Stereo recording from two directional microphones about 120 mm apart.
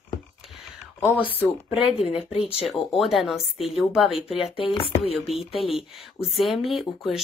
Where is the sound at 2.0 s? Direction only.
55° left (ahead or behind).